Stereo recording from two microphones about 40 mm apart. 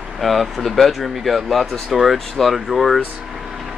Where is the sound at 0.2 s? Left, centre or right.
Centre.